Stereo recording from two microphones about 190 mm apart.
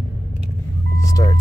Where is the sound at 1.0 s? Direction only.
20° left (ahead or behind).